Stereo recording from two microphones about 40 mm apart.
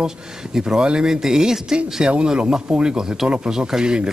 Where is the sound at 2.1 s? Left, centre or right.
Right.